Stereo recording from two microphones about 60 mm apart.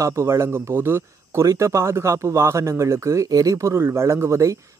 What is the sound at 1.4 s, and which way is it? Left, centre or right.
Speech, right.